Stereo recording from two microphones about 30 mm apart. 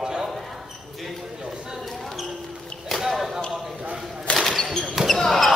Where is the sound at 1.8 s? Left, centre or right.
Centre.